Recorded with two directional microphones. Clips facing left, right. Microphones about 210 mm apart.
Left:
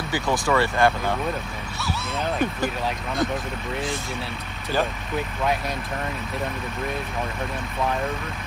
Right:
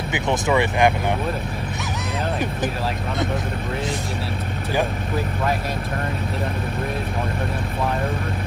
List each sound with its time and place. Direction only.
0.1 s speech: 20° right (ahead or behind)